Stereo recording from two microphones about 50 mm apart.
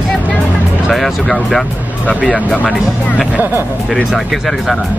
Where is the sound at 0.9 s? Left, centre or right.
Centre.